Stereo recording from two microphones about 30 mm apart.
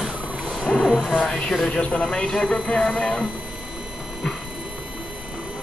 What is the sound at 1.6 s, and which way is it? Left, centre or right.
Speech, left.